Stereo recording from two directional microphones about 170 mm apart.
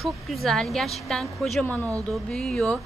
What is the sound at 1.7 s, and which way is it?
Speech, 20° right (ahead or behind).